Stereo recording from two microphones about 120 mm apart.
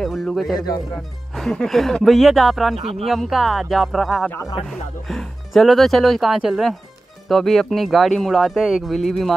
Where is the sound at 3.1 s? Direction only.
Centre (ahead or behind).